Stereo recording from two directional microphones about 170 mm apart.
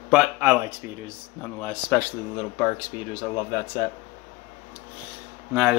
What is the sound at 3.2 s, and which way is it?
Speech, 20° left (ahead or behind).